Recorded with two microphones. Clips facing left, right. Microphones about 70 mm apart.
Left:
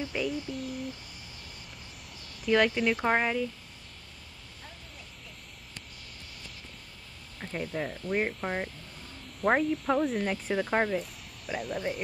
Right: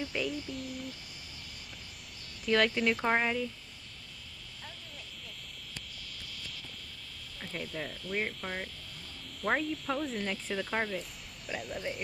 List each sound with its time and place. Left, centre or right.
0.0 s speech: centre
2.4 s speech: centre
7.3 s speech: left
11.0 s a sound: centre